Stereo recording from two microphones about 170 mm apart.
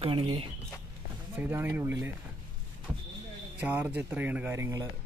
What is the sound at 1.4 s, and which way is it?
Speech, 10° right (ahead or behind).